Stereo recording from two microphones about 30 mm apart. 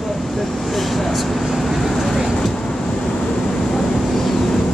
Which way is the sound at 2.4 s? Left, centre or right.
Centre.